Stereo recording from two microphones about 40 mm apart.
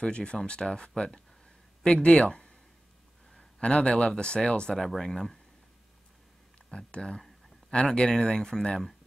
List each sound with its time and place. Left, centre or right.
0.1 s speech: left
3.5 s speech: left
4.7 s speech: centre
6.9 s speech: left
7.2 s a sound: centre
7.7 s speech: left